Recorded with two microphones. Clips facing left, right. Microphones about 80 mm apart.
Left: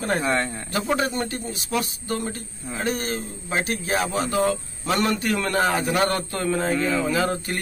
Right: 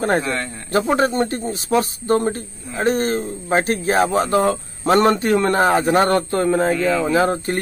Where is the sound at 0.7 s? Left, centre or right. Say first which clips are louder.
Right 10 dB; right.